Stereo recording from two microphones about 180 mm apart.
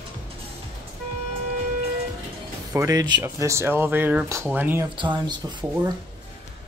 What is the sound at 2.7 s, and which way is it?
Speech, 20° right (ahead or behind).